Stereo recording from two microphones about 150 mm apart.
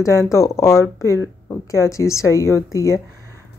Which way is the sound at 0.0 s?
20° left (ahead or behind).